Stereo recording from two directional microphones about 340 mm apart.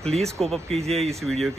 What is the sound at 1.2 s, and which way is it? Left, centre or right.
Speech, centre.